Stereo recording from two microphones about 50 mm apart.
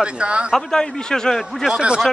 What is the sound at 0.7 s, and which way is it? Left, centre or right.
Speech, centre.